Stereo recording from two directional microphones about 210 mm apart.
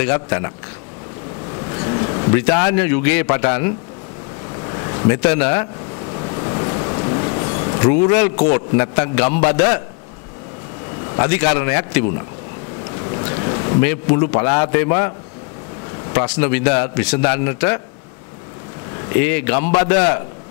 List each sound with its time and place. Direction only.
0.0 s a man's voice: 15° left (ahead or behind)
1.6 s speech: 20° left (ahead or behind)
6.1 s a sound: 25° left (ahead or behind)
8.5 s a man's voice: 20° left (ahead or behind)
11.1 s a man's voice: 15° left (ahead or behind)
13.3 s boat: 20° left (ahead or behind)
14.3 s a man's voice: 20° left (ahead or behind)
19.0 s a man's voice: 15° left (ahead or behind)